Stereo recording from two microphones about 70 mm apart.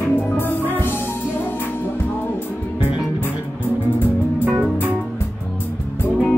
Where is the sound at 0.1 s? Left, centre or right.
Left.